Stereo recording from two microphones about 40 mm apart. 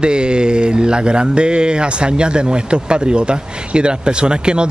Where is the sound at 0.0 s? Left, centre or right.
Right.